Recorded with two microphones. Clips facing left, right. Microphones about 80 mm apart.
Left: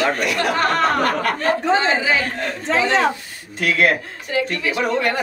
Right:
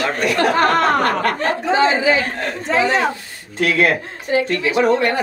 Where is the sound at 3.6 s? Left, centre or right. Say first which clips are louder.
Right 1 dB; right.